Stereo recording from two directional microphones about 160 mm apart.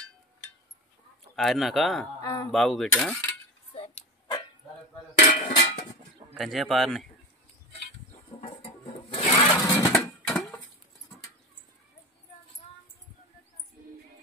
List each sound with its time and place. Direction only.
1.3 s speech: centre (ahead or behind)
2.2 s speech: 20° left (ahead or behind)
2.5 s speech: 5° left (ahead or behind)
3.7 s dog: 35° left (ahead or behind)
5.2 s dishes: 50° left (ahead or behind)
6.3 s speech: centre (ahead or behind)
8.4 s sewing machine: 40° left (ahead or behind)
9.6 s a sound: 20° left (ahead or behind)
9.9 s a sound: centre (ahead or behind)